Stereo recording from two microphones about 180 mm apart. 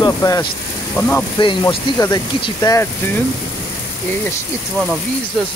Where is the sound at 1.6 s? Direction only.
15° left (ahead or behind).